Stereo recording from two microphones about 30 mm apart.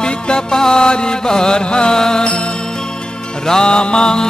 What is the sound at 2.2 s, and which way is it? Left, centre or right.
Music, left.